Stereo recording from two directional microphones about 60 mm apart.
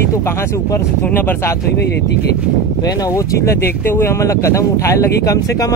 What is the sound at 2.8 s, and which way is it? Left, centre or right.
Speech, left.